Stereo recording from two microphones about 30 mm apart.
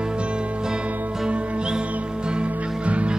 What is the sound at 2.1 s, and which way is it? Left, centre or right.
Music, right.